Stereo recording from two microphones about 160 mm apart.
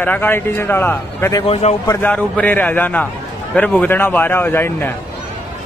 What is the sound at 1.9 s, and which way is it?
Speech, 10° left (ahead or behind).